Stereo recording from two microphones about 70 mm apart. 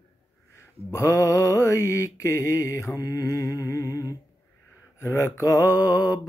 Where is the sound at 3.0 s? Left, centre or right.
Left.